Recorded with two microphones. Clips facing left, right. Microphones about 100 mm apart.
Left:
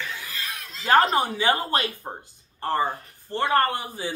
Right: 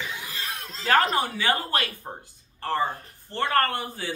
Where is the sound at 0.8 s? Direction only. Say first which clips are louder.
Left 3 dB; 20° left (ahead or behind).